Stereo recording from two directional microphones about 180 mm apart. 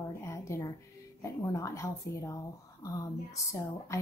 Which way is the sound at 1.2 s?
15° left (ahead or behind).